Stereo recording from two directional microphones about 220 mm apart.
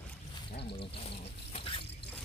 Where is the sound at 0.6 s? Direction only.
25° left (ahead or behind).